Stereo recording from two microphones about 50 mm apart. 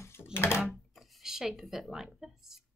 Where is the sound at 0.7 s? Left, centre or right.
Centre.